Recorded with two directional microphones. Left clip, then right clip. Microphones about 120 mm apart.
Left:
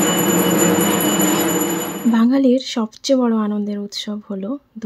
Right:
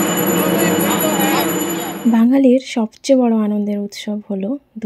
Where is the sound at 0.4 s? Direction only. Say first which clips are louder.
Even; 15° right (ahead or behind).